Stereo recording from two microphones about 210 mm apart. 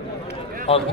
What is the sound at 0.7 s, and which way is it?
Speech, 25° left (ahead or behind).